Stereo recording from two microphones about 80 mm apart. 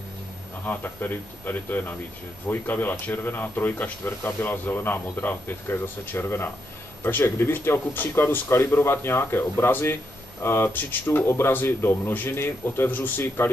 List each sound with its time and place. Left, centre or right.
0.7 s speech: left